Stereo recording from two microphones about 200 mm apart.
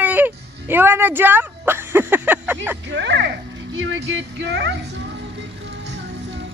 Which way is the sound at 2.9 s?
60° right (ahead or behind).